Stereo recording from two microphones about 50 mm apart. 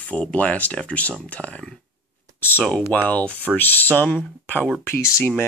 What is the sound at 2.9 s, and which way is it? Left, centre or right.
Speech, left.